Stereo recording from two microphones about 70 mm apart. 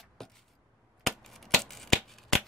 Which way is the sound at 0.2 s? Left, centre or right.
Centre.